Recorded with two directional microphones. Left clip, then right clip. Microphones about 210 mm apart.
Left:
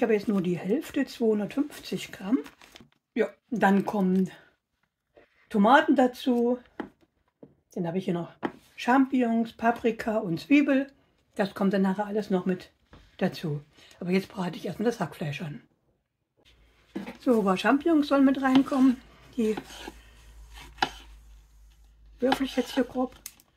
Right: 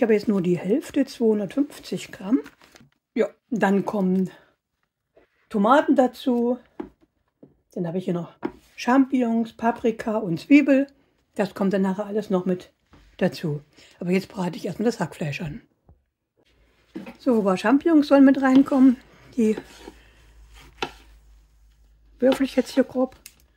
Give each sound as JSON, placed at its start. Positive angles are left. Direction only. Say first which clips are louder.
{"t": 0.0, "sound": "speech", "louder": "right 5 dB", "side_deg": -50}
{"t": 5.5, "sound": "speech", "louder": "right 2 dB", "side_deg": -40}
{"t": 7.7, "sound": "speech", "louder": "right 3 dB", "side_deg": -45}
{"t": 17.2, "sound": "speech", "louder": "right 3 dB", "side_deg": -40}
{"t": 22.2, "sound": "speech", "louder": "right 6 dB", "side_deg": -45}